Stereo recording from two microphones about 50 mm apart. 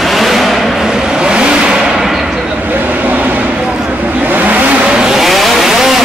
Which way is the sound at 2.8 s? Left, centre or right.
Right.